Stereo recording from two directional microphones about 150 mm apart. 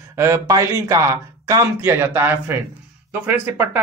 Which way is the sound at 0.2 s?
20° right (ahead or behind).